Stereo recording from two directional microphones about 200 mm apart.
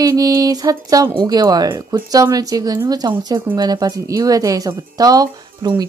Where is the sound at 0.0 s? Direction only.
20° right (ahead or behind).